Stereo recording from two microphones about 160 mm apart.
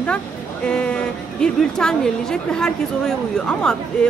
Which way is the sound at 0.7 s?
5° left (ahead or behind).